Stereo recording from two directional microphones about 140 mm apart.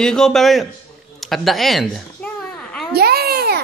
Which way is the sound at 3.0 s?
90° right.